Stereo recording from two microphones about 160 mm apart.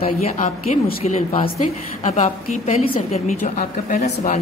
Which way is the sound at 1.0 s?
40° left (ahead or behind).